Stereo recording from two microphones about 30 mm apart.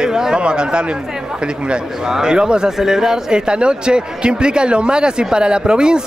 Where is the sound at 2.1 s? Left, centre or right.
Right.